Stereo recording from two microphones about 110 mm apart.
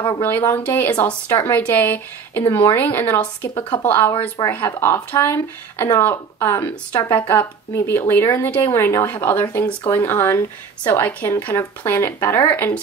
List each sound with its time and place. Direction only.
0.2 s a woman's voice: 20° left (ahead or behind)